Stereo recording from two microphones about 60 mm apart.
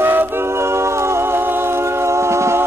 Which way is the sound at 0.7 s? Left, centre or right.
Right.